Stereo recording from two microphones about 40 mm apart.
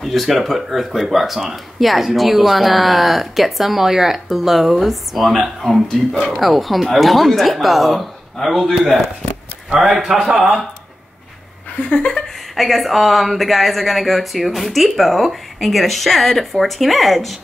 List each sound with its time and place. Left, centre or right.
0.0 s speech: centre
9.8 s speech: centre
11.8 s laughter: left
12.5 s speech: centre